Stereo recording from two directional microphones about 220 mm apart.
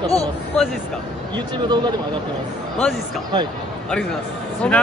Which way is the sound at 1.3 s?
20° right (ahead or behind).